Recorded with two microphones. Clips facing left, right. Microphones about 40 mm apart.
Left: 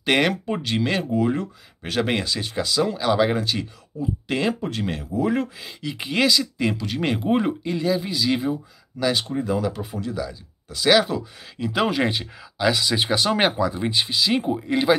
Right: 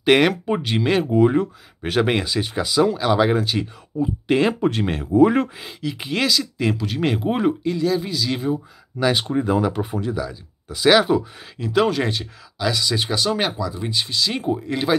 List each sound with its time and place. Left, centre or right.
0.0 s speech: centre
0.5 s speech: centre
4.3 s speech: centre
4.6 s speech: right
5.8 s speech: centre
9.0 s speech: right
10.1 s speech: centre
11.5 s speech: centre